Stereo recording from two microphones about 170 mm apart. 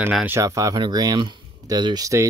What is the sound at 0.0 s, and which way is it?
Speech, 10° right (ahead or behind).